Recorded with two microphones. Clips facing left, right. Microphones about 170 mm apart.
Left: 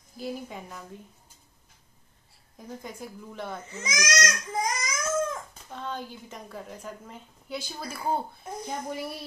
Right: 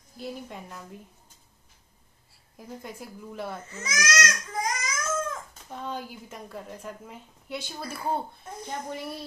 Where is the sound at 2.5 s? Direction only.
5° right (ahead or behind).